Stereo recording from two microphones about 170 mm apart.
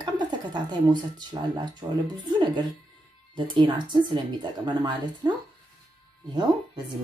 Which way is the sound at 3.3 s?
30° right (ahead or behind).